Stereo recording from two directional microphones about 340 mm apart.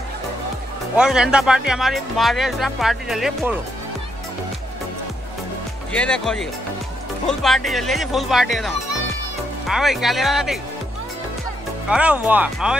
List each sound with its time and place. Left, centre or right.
0.9 s speech: centre
5.9 s speech: centre
11.9 s speech: centre